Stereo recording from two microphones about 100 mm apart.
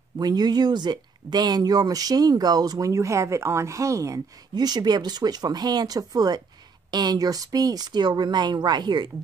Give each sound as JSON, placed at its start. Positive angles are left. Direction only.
{"t": 0.2, "sound": "speech", "side_deg": -45}